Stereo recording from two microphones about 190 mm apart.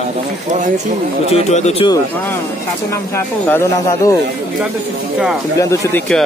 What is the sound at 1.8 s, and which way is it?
Speech, 25° left (ahead or behind).